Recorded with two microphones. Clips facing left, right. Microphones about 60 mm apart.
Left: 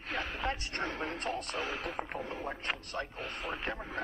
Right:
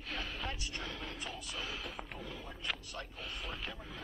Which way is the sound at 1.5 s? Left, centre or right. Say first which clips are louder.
Left 7 dB; left.